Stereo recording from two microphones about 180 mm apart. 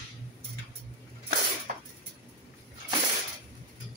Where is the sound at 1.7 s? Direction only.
45° right (ahead or behind).